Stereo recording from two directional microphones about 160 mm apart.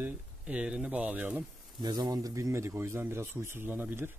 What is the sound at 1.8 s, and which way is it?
Speech, 25° right (ahead or behind).